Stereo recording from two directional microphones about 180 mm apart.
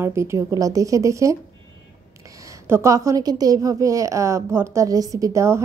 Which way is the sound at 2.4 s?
15° right (ahead or behind).